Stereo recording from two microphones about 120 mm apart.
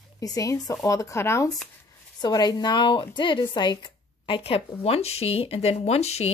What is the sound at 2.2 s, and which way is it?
A woman's voice, 35° left (ahead or behind).